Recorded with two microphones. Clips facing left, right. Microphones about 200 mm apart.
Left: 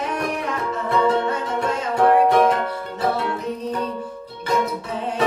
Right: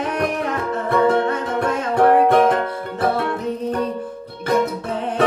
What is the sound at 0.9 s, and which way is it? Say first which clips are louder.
Music: right 3 dB; 55° right (ahead or behind).